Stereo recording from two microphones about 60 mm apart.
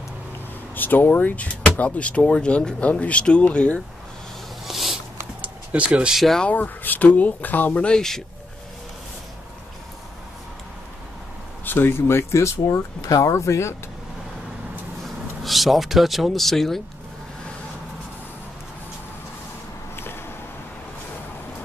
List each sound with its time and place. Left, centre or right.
0.7 s speech: left
4.6 s a sound: centre
5.4 s a sound: right
6.4 s speech: left
7.8 s speech: centre
11.6 s speech: left
13.0 s speech: left
15.4 s speech: centre